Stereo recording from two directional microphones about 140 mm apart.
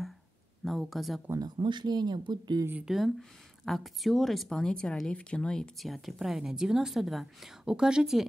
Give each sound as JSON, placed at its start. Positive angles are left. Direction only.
{"t": 0.7, "sound": "speech", "side_deg": 0}
{"t": 1.4, "sound": "speech", "side_deg": -30}
{"t": 2.8, "sound": "speech", "side_deg": 0}